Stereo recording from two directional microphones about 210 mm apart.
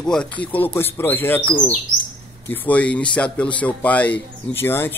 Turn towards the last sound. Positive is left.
turn(degrees=10)  # may be behind; listen again after turning